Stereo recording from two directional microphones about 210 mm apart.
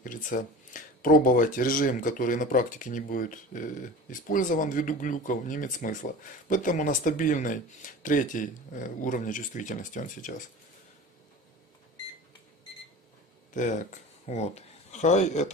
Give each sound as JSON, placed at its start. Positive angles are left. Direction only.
{"t": 0.0, "sound": "speech", "side_deg": 40}
{"t": 13.5, "sound": "speech", "side_deg": 35}